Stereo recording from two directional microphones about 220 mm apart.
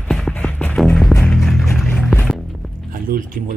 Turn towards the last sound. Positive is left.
turn(degrees=-40)  # may be behind; listen again after turning